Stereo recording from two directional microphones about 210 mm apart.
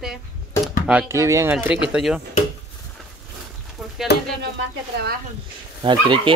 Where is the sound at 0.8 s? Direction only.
10° right (ahead or behind).